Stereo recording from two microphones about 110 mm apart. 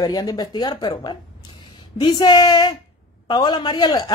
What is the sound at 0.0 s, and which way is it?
Speech, 35° left (ahead or behind).